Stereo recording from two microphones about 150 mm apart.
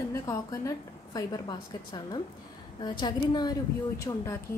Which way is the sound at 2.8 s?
30° left (ahead or behind).